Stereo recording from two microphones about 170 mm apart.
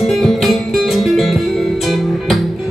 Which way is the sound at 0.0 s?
Centre (ahead or behind).